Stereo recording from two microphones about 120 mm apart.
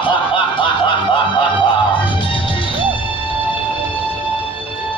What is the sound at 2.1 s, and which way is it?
Music, 45° left (ahead or behind).